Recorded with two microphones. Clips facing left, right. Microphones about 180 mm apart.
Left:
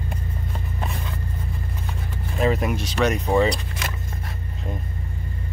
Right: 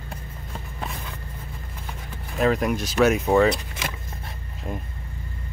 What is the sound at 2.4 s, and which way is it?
Speech, centre (ahead or behind).